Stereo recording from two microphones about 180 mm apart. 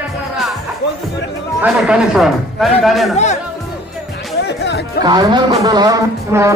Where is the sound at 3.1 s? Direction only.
40° left (ahead or behind).